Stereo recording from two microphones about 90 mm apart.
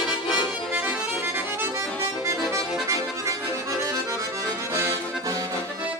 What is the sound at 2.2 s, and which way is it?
Accordion, 35° right (ahead or behind).